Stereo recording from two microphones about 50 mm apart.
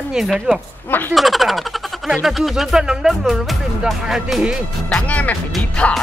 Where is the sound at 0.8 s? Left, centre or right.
Left.